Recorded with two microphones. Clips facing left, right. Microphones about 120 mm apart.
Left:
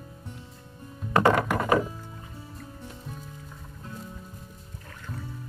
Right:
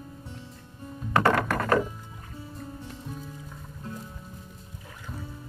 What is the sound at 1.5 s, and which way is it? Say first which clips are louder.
Music: left 1 dB; 15° left (ahead or behind).